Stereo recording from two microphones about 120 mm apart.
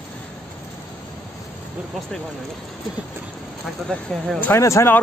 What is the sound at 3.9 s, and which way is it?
Speech, 5° left (ahead or behind).